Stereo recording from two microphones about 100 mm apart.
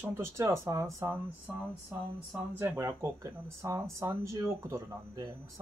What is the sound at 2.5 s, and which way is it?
Speech, 25° right (ahead or behind).